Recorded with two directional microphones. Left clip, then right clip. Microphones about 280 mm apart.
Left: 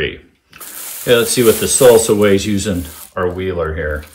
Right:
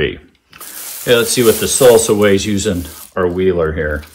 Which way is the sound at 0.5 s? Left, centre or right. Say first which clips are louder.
Right 1 dB; centre.